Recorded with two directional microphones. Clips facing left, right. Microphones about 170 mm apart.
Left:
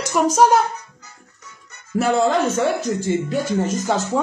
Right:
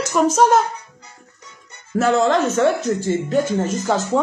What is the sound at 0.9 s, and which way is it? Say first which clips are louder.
Music: right 2 dB; 30° right (ahead or behind).